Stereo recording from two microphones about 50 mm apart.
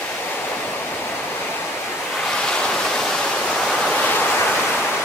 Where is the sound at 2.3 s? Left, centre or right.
Centre.